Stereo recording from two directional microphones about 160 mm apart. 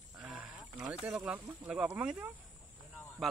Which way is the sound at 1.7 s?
5° right (ahead or behind).